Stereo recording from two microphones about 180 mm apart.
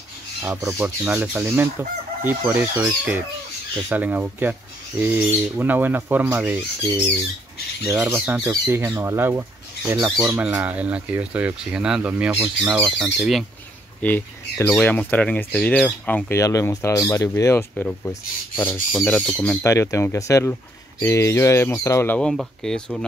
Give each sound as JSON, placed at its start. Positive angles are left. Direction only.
{"t": 0.4, "sound": "speech", "side_deg": -15}
{"t": 7.8, "sound": "speech", "side_deg": -10}
{"t": 14.0, "sound": "speech", "side_deg": 10}